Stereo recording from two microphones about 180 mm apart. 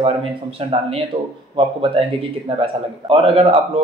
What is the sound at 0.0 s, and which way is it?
A man's voice, 30° right (ahead or behind).